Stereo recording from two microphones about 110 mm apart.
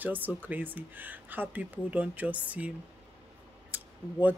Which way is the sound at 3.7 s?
15° right (ahead or behind).